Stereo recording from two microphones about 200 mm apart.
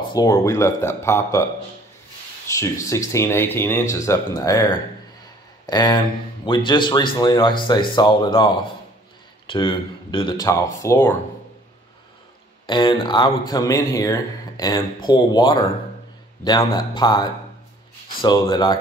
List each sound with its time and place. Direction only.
0.1 s speech: 15° left (ahead or behind)
9.5 s speech: 25° left (ahead or behind)
12.6 s speech: 25° left (ahead or behind)